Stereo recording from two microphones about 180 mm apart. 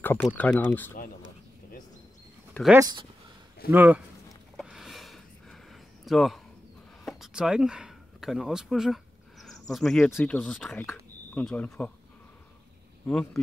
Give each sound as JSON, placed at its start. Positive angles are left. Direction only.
{"t": 0.0, "sound": "speech", "side_deg": 10}
{"t": 2.8, "sound": "speech", "side_deg": -25}
{"t": 3.7, "sound": "speech", "side_deg": -10}
{"t": 4.6, "sound": "a sound", "side_deg": 0}
{"t": 7.1, "sound": "speech", "side_deg": 0}
{"t": 10.8, "sound": "a sound", "side_deg": 15}
{"t": 11.4, "sound": "speech", "side_deg": 10}
{"t": 13.0, "sound": "speech", "side_deg": 5}